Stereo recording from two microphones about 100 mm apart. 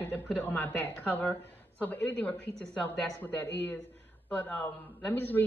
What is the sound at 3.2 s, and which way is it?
A woman's voice, 20° left (ahead or behind).